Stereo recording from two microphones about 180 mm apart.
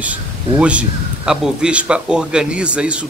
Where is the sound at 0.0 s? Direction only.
10° right (ahead or behind).